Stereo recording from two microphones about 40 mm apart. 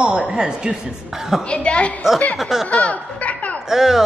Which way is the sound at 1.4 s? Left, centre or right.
Left.